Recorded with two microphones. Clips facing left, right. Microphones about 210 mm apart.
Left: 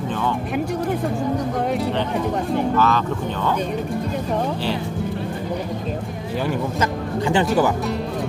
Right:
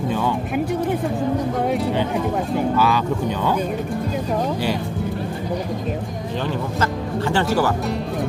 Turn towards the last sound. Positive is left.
turn(degrees=15)  # may be behind; listen again after turning